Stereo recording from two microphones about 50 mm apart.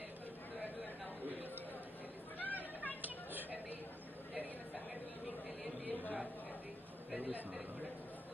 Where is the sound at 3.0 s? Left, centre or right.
Right.